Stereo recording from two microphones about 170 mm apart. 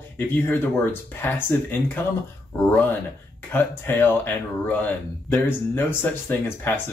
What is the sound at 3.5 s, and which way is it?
Speech, 10° left (ahead or behind).